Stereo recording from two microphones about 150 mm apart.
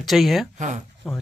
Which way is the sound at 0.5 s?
55° right (ahead or behind).